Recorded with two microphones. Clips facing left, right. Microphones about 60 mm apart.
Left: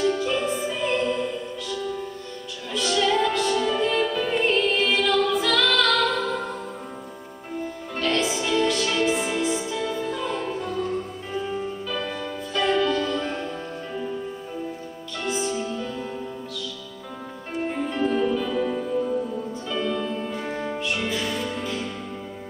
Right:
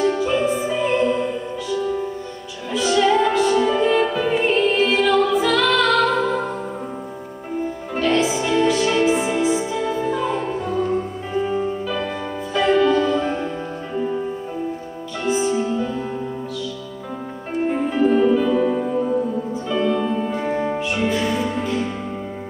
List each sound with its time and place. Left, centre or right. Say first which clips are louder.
0.0 s music: right 4 dB; centre
7.9 s music: right 5 dB; centre
12.5 s music: right 6 dB; centre
13.9 s music: right 8 dB; right
15.2 s music: right 7 dB; centre
17.6 s music: right 6 dB; centre
18.8 s music: right 5 dB; right; by 21.6 s centre